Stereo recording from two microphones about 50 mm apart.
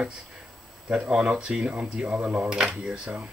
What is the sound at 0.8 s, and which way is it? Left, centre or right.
Speech, right.